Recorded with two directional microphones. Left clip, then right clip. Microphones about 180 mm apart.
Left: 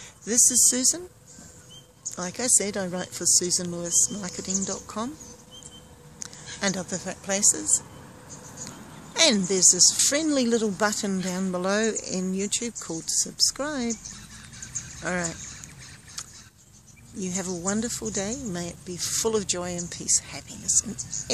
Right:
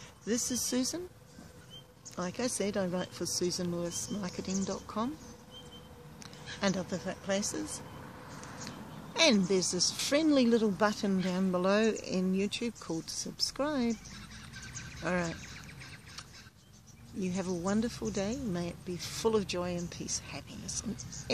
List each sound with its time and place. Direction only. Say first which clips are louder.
0.2 s speech: left 12 dB; 10° left (ahead or behind)
2.1 s a woman's voice: left 8 dB; 5° left (ahead or behind)
6.6 s a woman's voice: left 5 dB; 10° left (ahead or behind)
15.0 s speech: left 4 dB; 5° left (ahead or behind)
17.2 s a woman's voice: left 4 dB; 5° left (ahead or behind)
21.0 s speech: left 11 dB; 25° right (ahead or behind)